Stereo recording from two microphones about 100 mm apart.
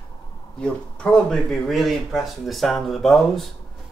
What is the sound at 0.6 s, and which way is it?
Speech, 5° left (ahead or behind).